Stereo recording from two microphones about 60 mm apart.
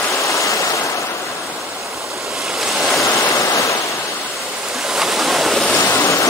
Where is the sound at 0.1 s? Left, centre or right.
Left.